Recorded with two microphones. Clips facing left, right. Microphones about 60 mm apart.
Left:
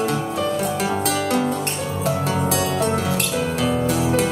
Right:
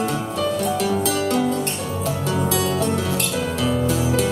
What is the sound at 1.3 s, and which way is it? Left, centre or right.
Music, centre.